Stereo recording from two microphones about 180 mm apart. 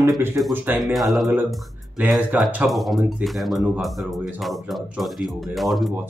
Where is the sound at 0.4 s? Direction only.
15° right (ahead or behind).